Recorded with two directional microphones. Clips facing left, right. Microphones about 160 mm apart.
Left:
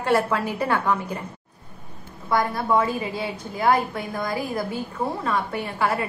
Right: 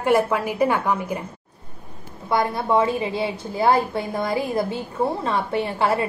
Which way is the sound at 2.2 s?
25° right (ahead or behind).